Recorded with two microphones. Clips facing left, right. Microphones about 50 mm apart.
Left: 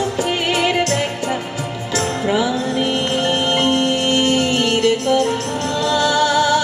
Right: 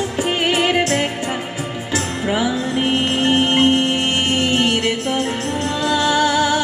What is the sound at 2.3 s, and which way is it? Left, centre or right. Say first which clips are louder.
Music: even; right.